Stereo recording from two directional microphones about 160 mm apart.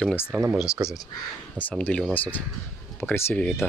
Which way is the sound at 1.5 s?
10° left (ahead or behind).